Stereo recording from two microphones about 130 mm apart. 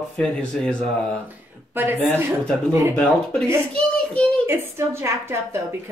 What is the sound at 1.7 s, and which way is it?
Speech, 15° right (ahead or behind).